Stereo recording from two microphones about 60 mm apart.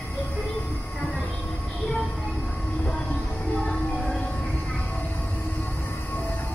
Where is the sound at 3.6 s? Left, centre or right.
Centre.